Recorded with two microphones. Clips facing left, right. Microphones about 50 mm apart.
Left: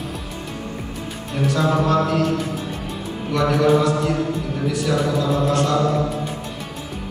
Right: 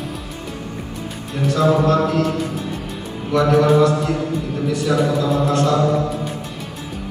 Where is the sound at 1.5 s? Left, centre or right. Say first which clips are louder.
Right 4 dB; centre.